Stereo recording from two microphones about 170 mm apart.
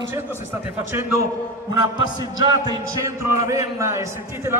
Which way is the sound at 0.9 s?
20° right (ahead or behind).